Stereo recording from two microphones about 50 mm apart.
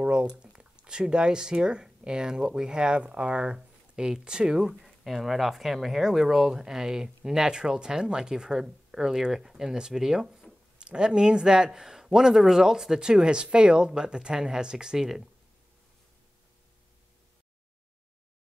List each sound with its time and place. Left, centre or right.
0.0 s speech: right